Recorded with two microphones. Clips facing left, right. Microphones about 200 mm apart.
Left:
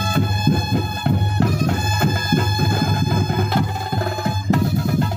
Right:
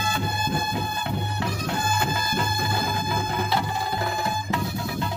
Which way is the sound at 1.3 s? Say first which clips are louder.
Left 8 dB; 50° left (ahead or behind).